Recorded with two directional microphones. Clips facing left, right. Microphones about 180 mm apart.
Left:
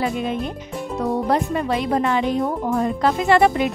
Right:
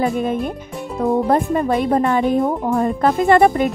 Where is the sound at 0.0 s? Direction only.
45° right (ahead or behind).